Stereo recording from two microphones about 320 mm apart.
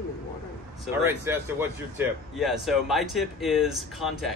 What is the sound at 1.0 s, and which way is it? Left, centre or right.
Speech, centre.